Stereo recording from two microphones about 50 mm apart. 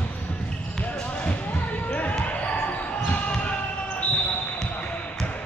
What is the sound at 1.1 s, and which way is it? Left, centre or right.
Basketball bounce, left.